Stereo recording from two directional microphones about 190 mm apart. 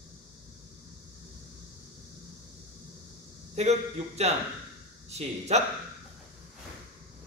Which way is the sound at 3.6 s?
35° right (ahead or behind).